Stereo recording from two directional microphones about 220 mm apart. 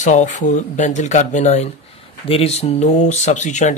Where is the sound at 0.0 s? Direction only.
35° left (ahead or behind).